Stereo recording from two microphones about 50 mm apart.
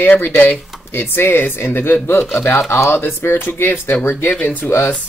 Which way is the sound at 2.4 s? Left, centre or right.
Left.